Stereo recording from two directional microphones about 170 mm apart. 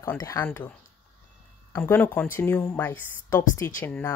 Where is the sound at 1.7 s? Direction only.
15° left (ahead or behind).